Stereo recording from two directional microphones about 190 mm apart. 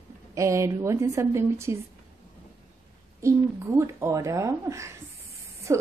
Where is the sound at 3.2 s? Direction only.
15° right (ahead or behind).